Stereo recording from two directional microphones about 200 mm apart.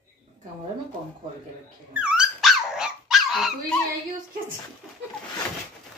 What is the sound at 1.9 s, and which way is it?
Dog, 5° right (ahead or behind).